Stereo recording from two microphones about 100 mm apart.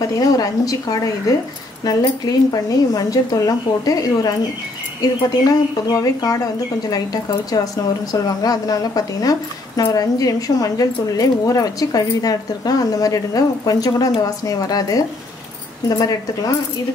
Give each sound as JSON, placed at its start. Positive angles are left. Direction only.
{"t": 0.1, "sound": "speech", "side_deg": 35}